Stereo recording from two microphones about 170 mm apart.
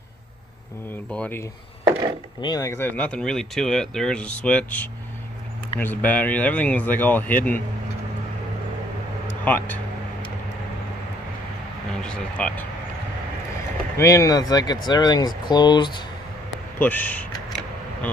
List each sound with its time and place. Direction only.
1.1 s speech: 5° left (ahead or behind)
2.4 s speech: 20° left (ahead or behind)
9.4 s speech: 10° left (ahead or behind)
11.9 s speech: 5° left (ahead or behind)
13.9 s speech: 20° left (ahead or behind)
16.7 s speech: 10° left (ahead or behind)